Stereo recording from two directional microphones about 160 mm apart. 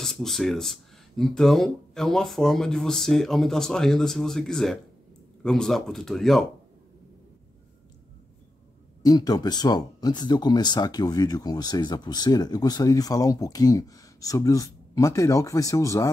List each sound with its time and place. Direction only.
0.0 s speech: centre (ahead or behind)
9.0 s speech: 25° left (ahead or behind)